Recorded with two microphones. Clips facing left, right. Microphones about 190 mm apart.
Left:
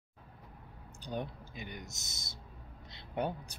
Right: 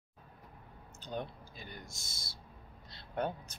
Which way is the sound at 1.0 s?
15° left (ahead or behind).